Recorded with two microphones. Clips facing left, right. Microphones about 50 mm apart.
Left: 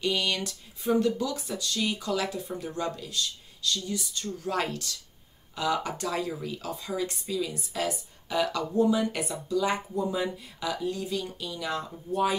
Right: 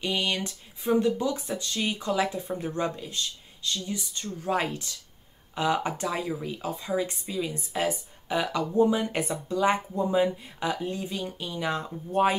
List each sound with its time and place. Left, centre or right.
0.0 s speech: right
5.5 s speech: right